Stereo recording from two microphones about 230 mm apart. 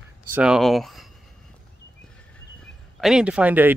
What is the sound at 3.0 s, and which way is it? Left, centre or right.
Speech, centre.